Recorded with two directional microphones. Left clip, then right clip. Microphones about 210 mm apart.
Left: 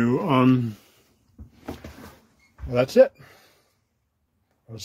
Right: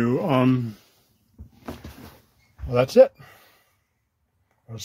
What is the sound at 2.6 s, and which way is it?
Speech, 5° right (ahead or behind).